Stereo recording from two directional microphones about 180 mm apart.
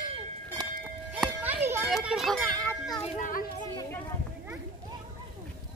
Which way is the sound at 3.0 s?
50° left (ahead or behind).